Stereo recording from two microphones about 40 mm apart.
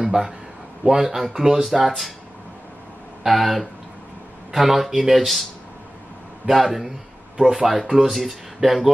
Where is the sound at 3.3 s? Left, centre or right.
Centre.